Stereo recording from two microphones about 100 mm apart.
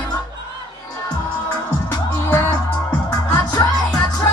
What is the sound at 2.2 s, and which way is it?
Music, 30° left (ahead or behind).